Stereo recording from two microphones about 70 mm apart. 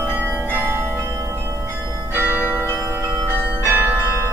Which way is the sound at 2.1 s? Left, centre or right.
Right.